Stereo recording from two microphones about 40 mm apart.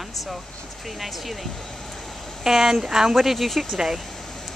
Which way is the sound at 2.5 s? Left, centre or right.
Centre.